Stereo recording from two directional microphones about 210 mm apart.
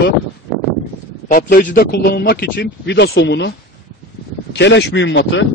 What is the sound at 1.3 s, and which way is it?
A man's voice, 40° left (ahead or behind).